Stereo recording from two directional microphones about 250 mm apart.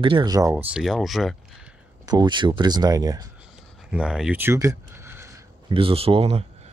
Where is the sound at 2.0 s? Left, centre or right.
Centre.